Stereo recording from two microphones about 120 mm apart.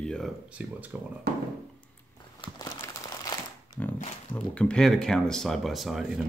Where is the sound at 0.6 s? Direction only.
10° right (ahead or behind).